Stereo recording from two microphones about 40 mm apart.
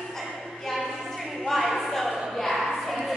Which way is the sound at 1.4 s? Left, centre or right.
Centre.